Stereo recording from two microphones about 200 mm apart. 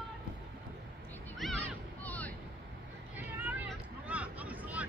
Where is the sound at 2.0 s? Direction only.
10° left (ahead or behind).